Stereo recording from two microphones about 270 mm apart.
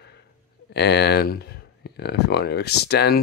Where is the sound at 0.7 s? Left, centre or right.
Left.